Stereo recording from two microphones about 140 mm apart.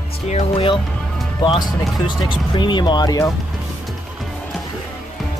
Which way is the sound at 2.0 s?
35° left (ahead or behind).